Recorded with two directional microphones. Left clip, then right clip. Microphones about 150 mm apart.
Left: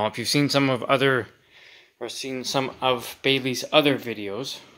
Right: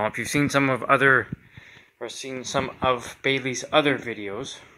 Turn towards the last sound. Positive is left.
turn(degrees=15)  # may be behind; listen again after turning